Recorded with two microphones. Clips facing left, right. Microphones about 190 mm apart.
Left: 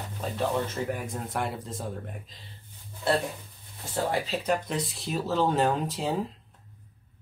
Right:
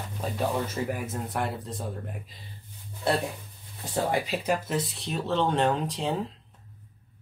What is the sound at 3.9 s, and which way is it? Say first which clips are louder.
Speech: right 1 dB; 15° right (ahead or behind).